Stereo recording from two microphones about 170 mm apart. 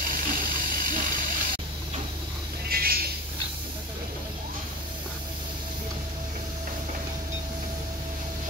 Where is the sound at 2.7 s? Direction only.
60° right (ahead or behind).